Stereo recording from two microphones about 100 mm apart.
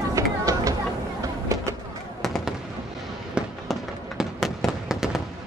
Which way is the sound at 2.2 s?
5° left (ahead or behind).